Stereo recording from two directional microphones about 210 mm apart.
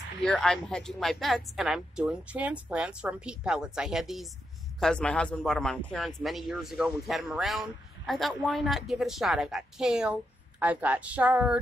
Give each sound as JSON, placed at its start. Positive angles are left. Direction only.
{"t": 0.2, "sound": "a woman's voice", "side_deg": 5}